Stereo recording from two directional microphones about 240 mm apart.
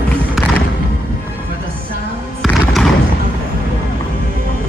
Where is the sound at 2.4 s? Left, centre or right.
Centre.